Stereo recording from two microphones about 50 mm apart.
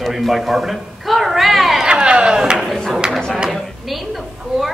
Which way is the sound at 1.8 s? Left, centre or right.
Centre.